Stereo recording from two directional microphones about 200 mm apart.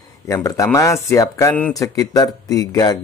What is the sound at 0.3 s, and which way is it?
Speech, 15° left (ahead or behind).